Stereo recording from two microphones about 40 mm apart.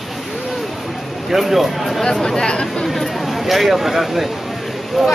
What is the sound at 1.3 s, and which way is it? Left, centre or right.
Speech, centre.